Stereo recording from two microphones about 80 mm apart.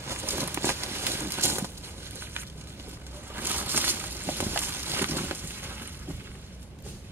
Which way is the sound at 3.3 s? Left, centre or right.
Right.